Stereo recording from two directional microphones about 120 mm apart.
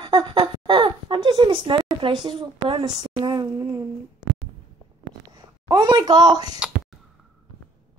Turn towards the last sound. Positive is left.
turn(degrees=-35)  # may be behind; listen again after turning